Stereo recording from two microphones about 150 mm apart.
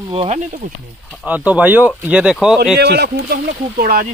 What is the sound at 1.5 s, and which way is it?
Speech, 10° right (ahead or behind).